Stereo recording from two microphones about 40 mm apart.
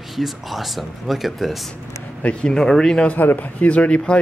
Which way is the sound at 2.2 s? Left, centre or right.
Left.